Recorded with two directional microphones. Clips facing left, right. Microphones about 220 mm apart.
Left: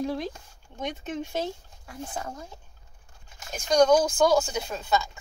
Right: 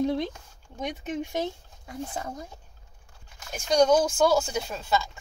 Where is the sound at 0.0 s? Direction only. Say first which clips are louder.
Right 3 dB; 20° right (ahead or behind).